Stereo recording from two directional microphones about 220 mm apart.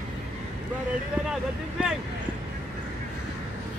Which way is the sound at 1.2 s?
Centre (ahead or behind).